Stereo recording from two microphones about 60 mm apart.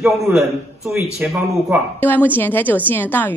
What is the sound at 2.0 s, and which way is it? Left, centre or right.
Speech, left.